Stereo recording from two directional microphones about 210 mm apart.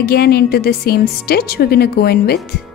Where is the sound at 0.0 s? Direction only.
45° left (ahead or behind).